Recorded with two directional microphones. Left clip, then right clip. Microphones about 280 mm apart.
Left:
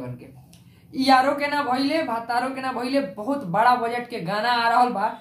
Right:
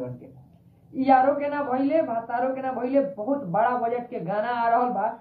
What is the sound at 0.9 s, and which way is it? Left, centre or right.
Speech, left.